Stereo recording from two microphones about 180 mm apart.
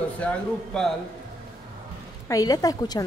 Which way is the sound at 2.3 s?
20° left (ahead or behind).